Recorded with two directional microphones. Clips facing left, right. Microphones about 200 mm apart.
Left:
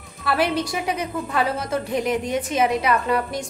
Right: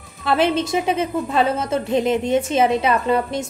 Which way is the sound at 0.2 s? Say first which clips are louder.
Right 3 dB; 20° right (ahead or behind).